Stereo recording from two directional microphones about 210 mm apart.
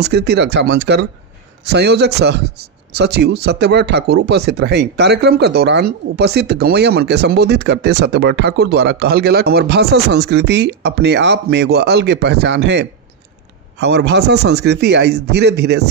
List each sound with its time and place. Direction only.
0.0 s speech: 50° right (ahead or behind)